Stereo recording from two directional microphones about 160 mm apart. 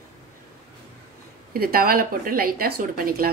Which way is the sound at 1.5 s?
70° right (ahead or behind).